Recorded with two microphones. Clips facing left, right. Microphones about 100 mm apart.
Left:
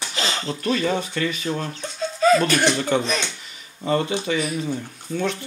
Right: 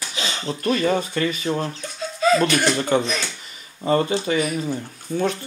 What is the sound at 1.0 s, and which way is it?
Speech, 40° right (ahead or behind).